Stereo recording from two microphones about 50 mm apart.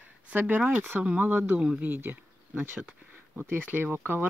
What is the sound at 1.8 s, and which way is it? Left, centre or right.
Speech, right.